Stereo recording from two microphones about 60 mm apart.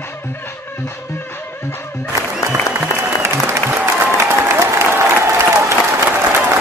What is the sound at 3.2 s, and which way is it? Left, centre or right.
Applause, right.